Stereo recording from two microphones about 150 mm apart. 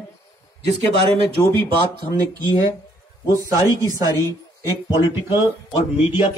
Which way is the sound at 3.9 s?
20° right (ahead or behind).